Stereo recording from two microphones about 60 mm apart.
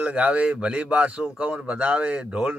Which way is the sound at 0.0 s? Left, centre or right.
Centre.